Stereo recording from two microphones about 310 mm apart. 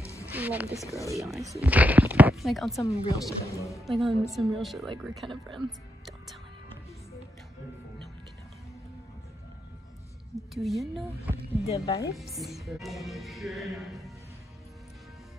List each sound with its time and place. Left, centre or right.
0.0 s music: centre
0.3 s music: centre
0.7 s speech: centre
5.7 s music: centre
10.3 s speech: centre
11.6 s speech: centre
12.2 s speech: centre